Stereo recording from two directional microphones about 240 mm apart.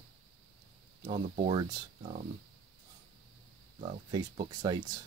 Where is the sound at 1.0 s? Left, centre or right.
Right.